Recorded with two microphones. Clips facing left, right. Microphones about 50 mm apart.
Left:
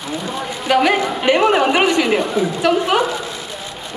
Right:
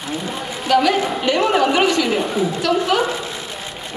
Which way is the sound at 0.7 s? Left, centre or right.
Left.